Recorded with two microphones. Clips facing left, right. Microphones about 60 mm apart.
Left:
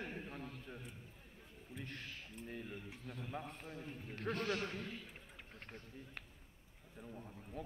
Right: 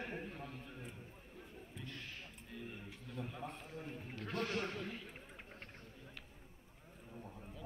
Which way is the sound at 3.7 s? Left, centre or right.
Right.